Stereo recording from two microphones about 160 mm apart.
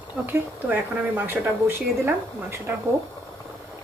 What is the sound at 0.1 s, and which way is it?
Speech, 10° right (ahead or behind).